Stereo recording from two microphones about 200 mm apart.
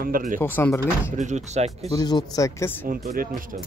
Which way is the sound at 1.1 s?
35° right (ahead or behind).